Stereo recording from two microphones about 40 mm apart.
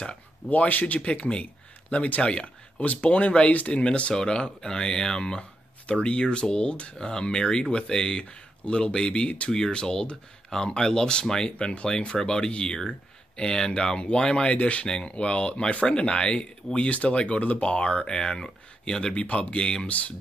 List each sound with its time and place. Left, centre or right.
0.5 s speech: left
1.0 s speech: left
4.1 s speech: centre
7.0 s speech: centre
11.5 s speech: left
16.9 s speech: left
17.6 s speech: left
19.9 s speech: left